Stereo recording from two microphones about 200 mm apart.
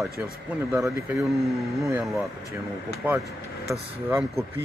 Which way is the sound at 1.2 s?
Centre (ahead or behind).